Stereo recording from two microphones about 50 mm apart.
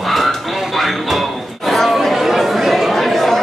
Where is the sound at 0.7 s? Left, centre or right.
Centre.